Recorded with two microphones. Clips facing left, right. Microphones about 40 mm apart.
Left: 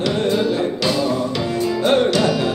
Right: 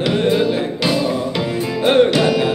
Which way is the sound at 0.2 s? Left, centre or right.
Centre.